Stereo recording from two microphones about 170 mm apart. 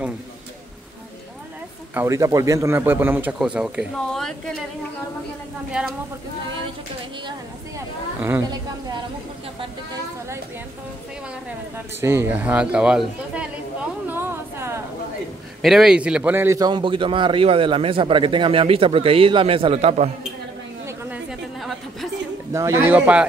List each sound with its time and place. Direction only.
2.0 s speech: 20° right (ahead or behind); by 4.6 s centre (ahead or behind)
5.7 s speech: 5° right (ahead or behind)
8.2 s speech: 15° right (ahead or behind)
12.0 s speech: 15° right (ahead or behind)
14.0 s a sound: 15° right (ahead or behind)
15.6 s a man's voice: centre (ahead or behind); by 20.1 s 35° right (ahead or behind)
20.8 s a sound: 15° right (ahead or behind)
21.3 s a sound: centre (ahead or behind)
22.5 s speech: 15° right (ahead or behind)